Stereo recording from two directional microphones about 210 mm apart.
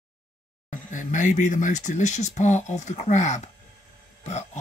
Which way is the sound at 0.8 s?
35° left (ahead or behind).